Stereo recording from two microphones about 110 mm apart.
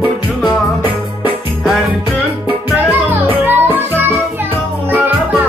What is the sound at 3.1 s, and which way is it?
Music, 20° right (ahead or behind).